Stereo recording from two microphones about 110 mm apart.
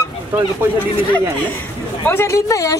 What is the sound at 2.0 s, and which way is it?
Speech, 25° left (ahead or behind).